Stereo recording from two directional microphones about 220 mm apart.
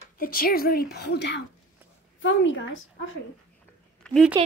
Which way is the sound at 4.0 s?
5° left (ahead or behind).